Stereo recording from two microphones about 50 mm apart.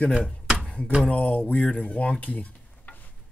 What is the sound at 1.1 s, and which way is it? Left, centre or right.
Speech, left.